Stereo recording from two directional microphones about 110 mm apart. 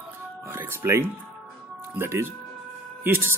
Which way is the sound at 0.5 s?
20° right (ahead or behind).